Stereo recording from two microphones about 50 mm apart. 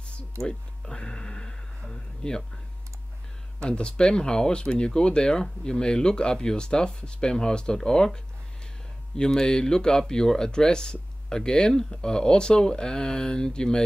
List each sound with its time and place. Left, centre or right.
0.4 s speech: centre
3.7 s speech: centre